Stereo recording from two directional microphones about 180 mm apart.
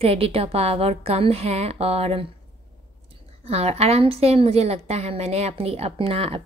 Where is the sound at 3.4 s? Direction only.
35° right (ahead or behind).